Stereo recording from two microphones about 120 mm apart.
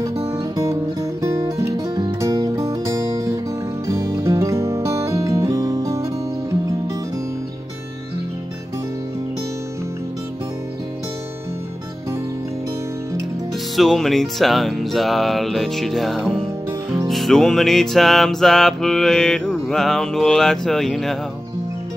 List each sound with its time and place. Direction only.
0.4 s music: 30° right (ahead or behind)
13.7 s music: centre (ahead or behind)